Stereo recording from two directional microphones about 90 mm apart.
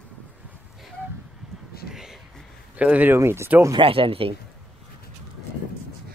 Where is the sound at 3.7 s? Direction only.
80° right.